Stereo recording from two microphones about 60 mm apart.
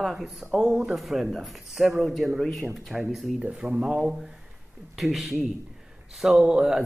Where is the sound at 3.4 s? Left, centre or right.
Right; by 6.4 s centre.